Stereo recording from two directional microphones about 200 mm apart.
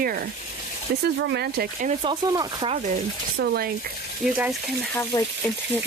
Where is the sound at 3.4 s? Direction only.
50° right (ahead or behind).